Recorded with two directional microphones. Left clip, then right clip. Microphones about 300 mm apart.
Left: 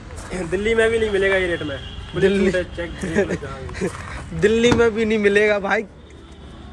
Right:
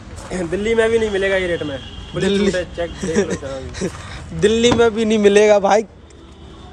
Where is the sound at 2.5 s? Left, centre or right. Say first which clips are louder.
Right 2 dB; right.